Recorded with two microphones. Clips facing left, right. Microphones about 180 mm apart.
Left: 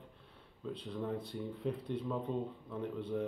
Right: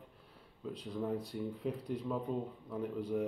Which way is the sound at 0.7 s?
25° left (ahead or behind).